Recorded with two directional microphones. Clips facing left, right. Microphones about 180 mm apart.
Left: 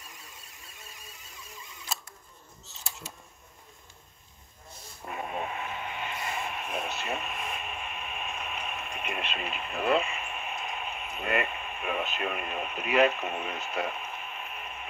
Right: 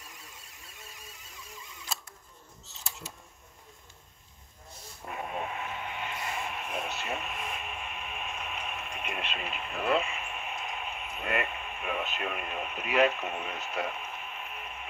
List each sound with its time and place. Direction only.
5.2 s vehicle: centre (ahead or behind)
6.8 s radio: 5° right (ahead or behind)